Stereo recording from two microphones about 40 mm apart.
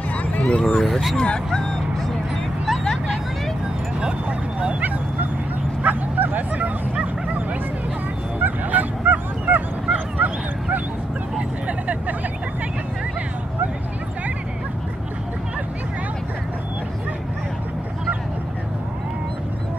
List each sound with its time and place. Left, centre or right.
0.6 s speech: left
0.8 s speech: centre
1.1 s speech: centre
4.0 s bow-wow: right
5.8 s bow-wow: right
8.4 s honk: right
9.9 s bow-wow: right
11.6 s vehicle: right